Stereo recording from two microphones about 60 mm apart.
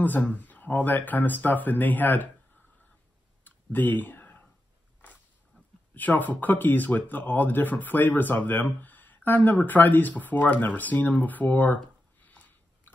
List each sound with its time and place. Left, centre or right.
0.0 s speech: left
3.4 s clicking: left
5.9 s speech: left
12.3 s a sound: left